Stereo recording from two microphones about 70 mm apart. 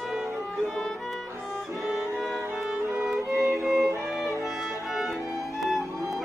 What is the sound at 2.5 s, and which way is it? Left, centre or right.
Music, centre.